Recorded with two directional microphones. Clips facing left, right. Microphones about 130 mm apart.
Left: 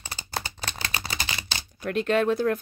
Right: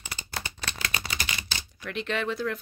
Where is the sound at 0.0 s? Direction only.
35° left (ahead or behind).